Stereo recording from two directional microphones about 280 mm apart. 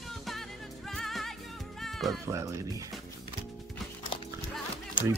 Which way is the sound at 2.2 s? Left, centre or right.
Centre.